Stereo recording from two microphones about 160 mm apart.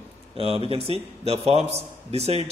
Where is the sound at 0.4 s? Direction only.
35° right (ahead or behind).